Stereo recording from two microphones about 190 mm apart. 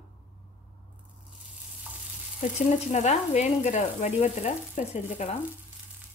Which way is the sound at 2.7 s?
35° left (ahead or behind).